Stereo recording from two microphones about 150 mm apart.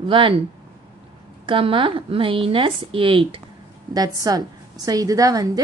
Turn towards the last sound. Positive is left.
turn(degrees=-25)  # may be behind; listen again after turning